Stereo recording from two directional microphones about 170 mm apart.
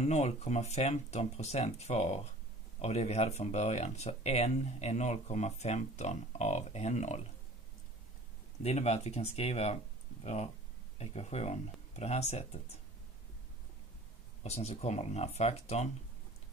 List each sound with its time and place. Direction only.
0.0 s speech: 40° left (ahead or behind)
8.6 s speech: 40° left (ahead or behind)
14.4 s speech: 40° left (ahead or behind)